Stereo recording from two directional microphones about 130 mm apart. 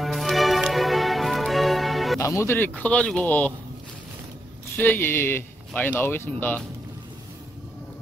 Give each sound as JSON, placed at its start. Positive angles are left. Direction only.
{"t": 0.0, "sound": "music", "side_deg": 0}
{"t": 2.1, "sound": "speech", "side_deg": 20}
{"t": 4.7, "sound": "speech", "side_deg": 15}